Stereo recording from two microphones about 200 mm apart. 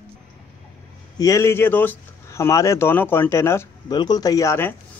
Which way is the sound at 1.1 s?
15° left (ahead or behind).